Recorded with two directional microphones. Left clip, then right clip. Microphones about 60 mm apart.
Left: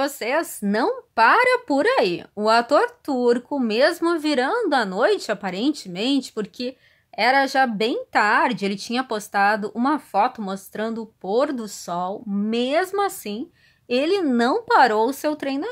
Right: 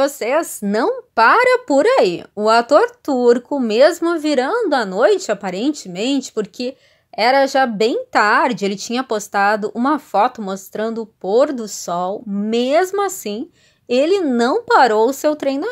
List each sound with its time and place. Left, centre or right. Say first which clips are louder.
0.0 s speech: right 6 dB; centre
3.1 s speech: right 6 dB; right
4.0 s speech: right 4 dB; centre
12.4 s speech: right 6 dB; right
13.8 s speech: right 5 dB; centre